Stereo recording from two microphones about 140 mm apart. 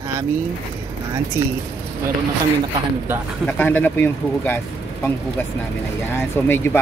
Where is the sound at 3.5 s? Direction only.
15° left (ahead or behind).